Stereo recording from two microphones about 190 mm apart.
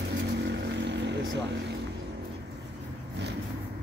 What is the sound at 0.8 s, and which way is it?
Vehicle, 65° right (ahead or behind).